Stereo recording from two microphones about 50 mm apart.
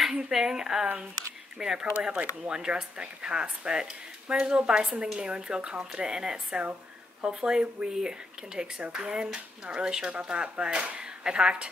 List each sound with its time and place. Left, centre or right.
0.1 s a woman's voice: centre
2.0 s a woman's voice: right